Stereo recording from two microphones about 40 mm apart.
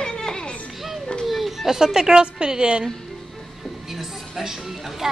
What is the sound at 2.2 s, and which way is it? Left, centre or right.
Speech, right.